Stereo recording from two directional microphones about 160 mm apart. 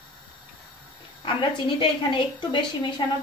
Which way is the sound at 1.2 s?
30° left (ahead or behind).